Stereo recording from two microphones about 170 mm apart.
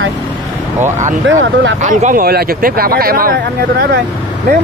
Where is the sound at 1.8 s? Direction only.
45° right (ahead or behind).